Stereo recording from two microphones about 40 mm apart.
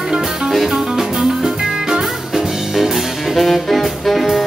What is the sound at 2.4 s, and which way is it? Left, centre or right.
Music, centre.